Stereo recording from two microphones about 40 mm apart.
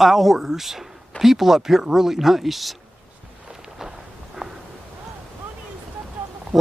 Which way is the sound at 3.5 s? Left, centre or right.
Centre.